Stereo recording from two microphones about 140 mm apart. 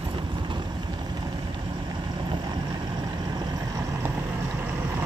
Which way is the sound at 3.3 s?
25° right (ahead or behind).